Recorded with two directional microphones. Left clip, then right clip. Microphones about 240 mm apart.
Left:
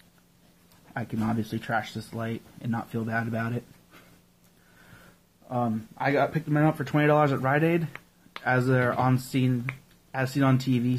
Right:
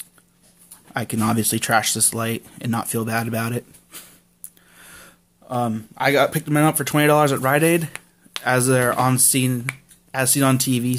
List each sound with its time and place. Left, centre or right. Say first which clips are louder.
0.9 s speech: right 9 dB; right
5.5 s speech: right 5 dB; right